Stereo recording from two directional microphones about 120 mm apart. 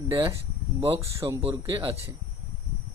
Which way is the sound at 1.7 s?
55° right (ahead or behind).